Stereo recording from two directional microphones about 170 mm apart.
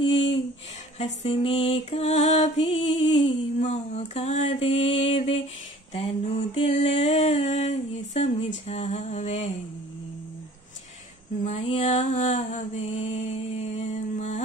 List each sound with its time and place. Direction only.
0.0 s a sound: 35° left (ahead or behind)
0.9 s female singing: 40° left (ahead or behind)
11.4 s mantra: 40° left (ahead or behind)